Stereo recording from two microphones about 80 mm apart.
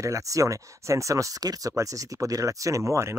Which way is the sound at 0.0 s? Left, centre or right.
Right.